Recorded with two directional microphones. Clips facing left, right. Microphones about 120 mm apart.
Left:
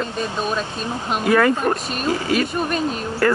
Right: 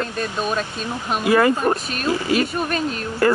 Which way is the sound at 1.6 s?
Centre (ahead or behind).